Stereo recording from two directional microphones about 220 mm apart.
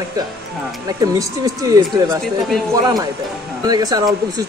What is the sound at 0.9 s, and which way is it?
Speech, 15° right (ahead or behind).